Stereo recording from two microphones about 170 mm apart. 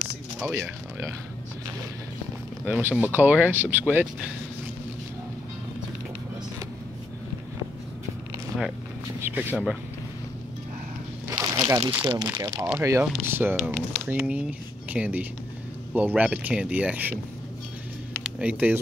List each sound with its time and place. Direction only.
0.4 s speech: 15° right (ahead or behind)
2.6 s speech: 10° right (ahead or behind)
9.2 s speech: 10° right (ahead or behind)
11.2 s a sound: 20° right (ahead or behind)
12.0 s speech: 25° right (ahead or behind)
12.3 s speech: 15° right (ahead or behind)
18.2 s speech: 5° right (ahead or behind)